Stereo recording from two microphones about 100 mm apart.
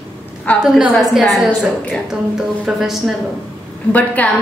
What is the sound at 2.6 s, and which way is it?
Speech, 5° right (ahead or behind).